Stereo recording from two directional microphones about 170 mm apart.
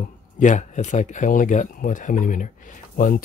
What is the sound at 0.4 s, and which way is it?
Speech, 45° left (ahead or behind).